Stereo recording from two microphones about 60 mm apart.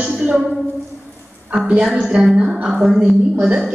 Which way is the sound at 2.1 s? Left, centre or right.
Centre.